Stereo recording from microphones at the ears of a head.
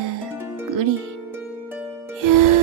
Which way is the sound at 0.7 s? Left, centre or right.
Right.